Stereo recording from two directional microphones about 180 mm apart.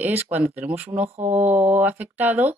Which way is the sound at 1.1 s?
35° right (ahead or behind).